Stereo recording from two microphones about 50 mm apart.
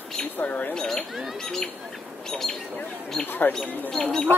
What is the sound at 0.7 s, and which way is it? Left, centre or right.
Speech, centre.